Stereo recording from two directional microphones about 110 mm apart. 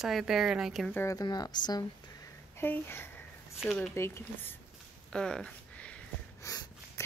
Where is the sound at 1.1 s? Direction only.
35° left (ahead or behind).